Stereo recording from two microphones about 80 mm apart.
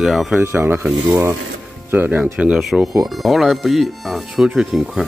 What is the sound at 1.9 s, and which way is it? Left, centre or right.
Speech, right.